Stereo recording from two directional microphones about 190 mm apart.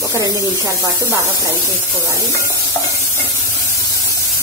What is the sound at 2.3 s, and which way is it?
Stir, 15° left (ahead or behind).